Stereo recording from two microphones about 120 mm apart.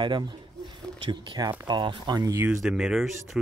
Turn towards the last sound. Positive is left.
turn(degrees=-5)  # may be behind; listen again after turning